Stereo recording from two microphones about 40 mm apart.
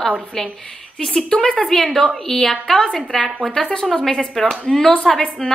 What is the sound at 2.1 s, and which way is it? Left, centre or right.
A woman's voice, centre.